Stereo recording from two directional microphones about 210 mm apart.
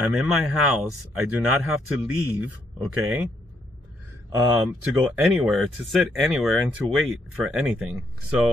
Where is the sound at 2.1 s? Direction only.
90° right.